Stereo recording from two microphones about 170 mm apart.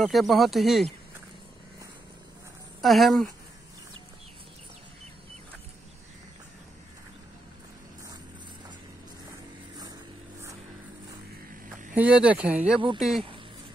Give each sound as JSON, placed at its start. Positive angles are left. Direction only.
{"t": 0.0, "sound": "speech", "side_deg": 0}
{"t": 2.8, "sound": "speech", "side_deg": 0}
{"t": 11.9, "sound": "speech", "side_deg": -10}